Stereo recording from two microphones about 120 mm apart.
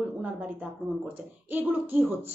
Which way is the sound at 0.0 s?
5° right (ahead or behind).